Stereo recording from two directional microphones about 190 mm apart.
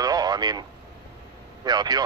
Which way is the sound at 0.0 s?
20° right (ahead or behind).